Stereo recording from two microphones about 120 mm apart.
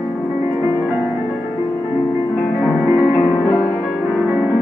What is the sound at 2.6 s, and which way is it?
Music, centre (ahead or behind).